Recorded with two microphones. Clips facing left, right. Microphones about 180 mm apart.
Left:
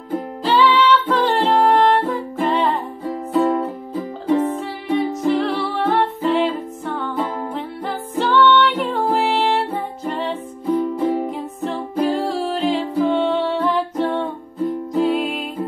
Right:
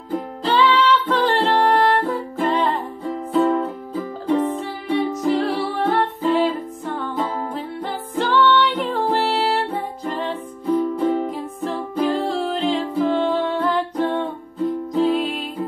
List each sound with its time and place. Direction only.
0.4 s music: 5° left (ahead or behind)